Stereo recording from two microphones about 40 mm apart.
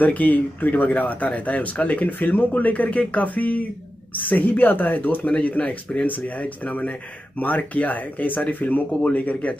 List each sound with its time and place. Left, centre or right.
0.0 s a man's voice: left
6.0 s a man's voice: left